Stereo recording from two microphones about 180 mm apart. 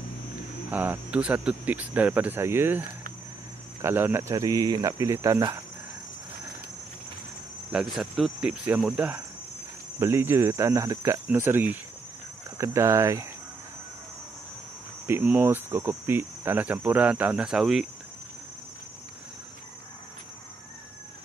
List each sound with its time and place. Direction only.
0.7 s cricket: 10° right (ahead or behind)
3.8 s cricket: 10° right (ahead or behind)
7.7 s speech: centre (ahead or behind)
9.9 s cricket: 15° right (ahead or behind)
15.0 s cricket: 10° right (ahead or behind)